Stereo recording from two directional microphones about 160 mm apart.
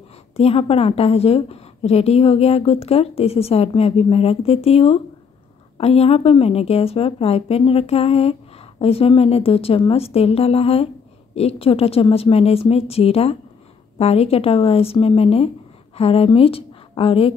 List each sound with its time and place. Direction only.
0.4 s a woman's voice: 40° left (ahead or behind)